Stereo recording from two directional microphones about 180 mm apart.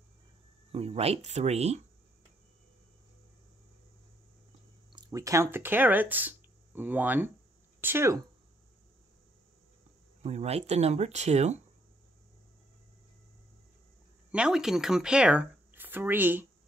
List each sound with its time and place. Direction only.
0.7 s speech: 35° right (ahead or behind)
4.9 s speech: 20° right (ahead or behind)
10.2 s speech: 35° right (ahead or behind)
14.3 s speech: 5° right (ahead or behind)